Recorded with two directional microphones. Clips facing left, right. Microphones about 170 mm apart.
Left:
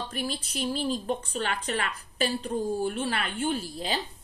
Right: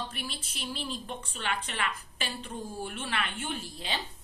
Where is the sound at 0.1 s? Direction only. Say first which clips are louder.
Left 8 dB; 40° left (ahead or behind).